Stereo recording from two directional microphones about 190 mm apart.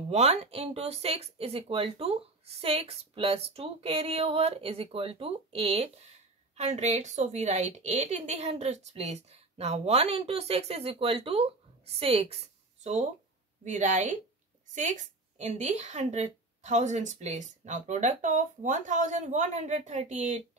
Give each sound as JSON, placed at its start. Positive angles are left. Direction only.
{"t": 0.1, "sound": "a woman's voice", "side_deg": -35}
{"t": 13.7, "sound": "a woman's voice", "side_deg": -40}